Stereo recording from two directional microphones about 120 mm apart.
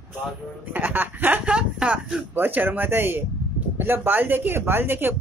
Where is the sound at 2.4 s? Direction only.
15° right (ahead or behind).